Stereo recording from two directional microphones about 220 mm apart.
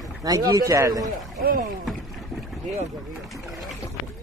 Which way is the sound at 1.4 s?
40° right (ahead or behind).